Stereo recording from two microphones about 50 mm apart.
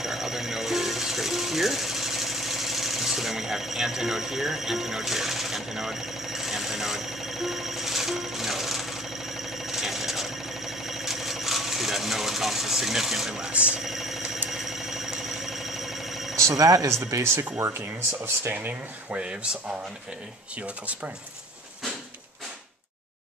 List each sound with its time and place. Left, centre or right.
0.0 s music: centre
13.5 s speech: right
13.7 s speech: centre
14.5 s a sound: centre
16.3 s speech: right
17.0 s speech: right
17.6 s speech: right
18.5 s speech: right
20.6 s speech: right